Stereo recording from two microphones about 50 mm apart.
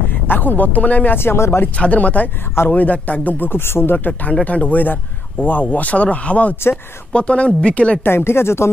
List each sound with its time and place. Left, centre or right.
0.3 s speech: left
1.1 s speech: left
1.8 s speech: left
3.5 s speech: left
4.5 s speech: left
8.0 s speech: left